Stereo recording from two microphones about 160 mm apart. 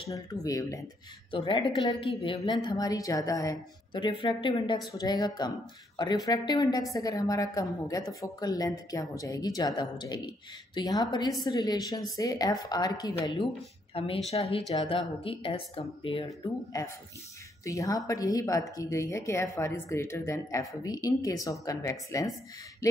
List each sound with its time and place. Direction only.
0.1 s speech: 20° left (ahead or behind)
1.3 s a woman's voice: 30° left (ahead or behind)
13.9 s a woman's voice: 35° left (ahead or behind)
16.3 s speech: 20° left (ahead or behind)